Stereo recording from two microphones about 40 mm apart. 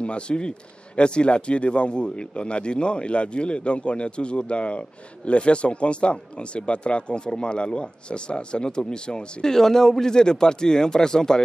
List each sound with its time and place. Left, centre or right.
0.0 s speech: left